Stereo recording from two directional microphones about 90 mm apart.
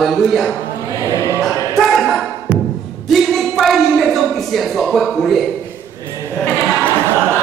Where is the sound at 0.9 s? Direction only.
40° right (ahead or behind).